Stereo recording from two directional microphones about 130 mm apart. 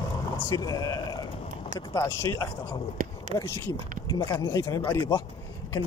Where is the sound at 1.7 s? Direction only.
25° left (ahead or behind).